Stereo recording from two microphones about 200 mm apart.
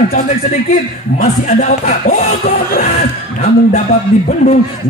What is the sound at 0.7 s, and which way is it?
A man's voice, 40° left (ahead or behind).